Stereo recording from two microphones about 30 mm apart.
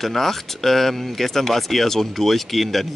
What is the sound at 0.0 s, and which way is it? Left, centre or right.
Speech, centre.